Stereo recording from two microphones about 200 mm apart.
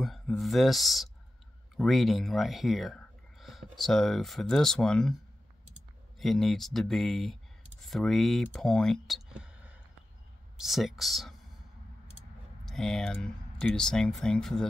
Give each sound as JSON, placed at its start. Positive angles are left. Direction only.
{"t": 0.0, "sound": "speech", "side_deg": 0}
{"t": 6.1, "sound": "speech", "side_deg": 0}
{"t": 12.6, "sound": "speech", "side_deg": 0}